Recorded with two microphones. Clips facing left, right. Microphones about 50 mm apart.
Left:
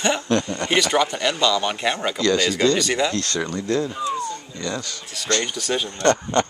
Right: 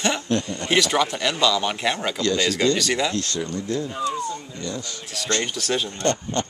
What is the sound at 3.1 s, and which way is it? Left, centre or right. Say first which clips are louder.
Speech: left 2 dB; left.